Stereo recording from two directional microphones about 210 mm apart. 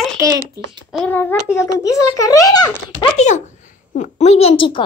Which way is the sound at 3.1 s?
35° left (ahead or behind).